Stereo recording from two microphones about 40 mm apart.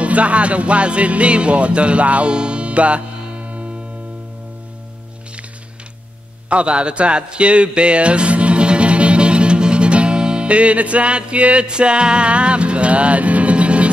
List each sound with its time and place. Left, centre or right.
0.0 s speech: right
6.5 s speech: right